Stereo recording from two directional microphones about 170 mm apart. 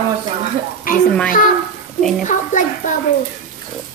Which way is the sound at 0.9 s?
55° left (ahead or behind).